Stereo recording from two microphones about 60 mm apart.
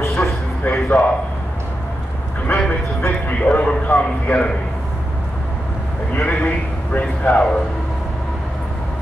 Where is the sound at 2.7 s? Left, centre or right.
Left.